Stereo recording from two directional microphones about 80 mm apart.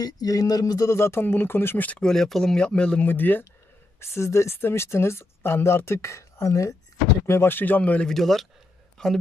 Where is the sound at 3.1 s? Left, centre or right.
Left.